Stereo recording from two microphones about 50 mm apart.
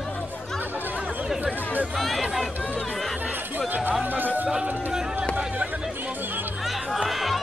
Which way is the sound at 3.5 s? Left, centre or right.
Right.